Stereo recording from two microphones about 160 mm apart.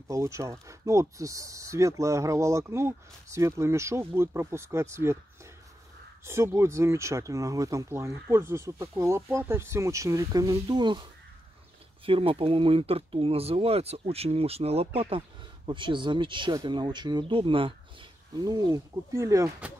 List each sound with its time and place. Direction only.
0.1 s speech: 20° right (ahead or behind)
12.1 s speech: 35° right (ahead or behind)